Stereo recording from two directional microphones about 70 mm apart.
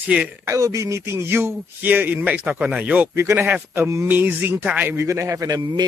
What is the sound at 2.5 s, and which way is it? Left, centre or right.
Speech, centre.